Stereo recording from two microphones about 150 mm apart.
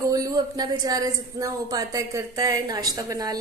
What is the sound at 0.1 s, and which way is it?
A woman's voice, 25° right (ahead or behind).